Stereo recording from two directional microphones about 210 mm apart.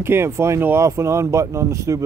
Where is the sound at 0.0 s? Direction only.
10° right (ahead or behind).